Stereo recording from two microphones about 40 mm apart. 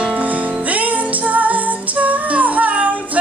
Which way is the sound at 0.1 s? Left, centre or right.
Right.